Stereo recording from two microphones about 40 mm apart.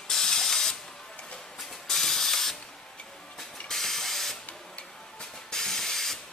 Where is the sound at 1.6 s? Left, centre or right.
Centre.